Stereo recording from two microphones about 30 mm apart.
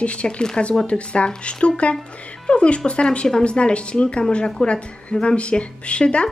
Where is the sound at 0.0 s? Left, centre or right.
Left.